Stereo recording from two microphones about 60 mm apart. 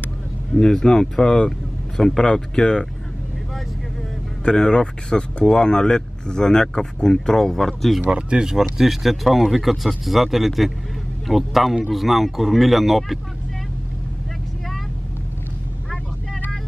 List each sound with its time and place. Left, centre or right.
0.5 s speech: centre
4.5 s speech: centre
8.1 s speech: centre